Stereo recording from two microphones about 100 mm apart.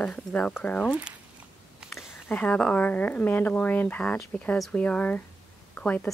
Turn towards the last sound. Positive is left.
turn(degrees=15)  # may be behind; listen again after turning